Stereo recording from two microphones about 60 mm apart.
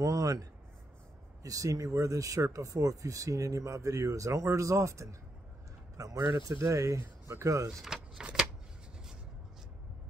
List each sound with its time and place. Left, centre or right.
0.0 s speech: right
5.9 s speech: right
6.5 s speech: right
7.8 s vehicle: centre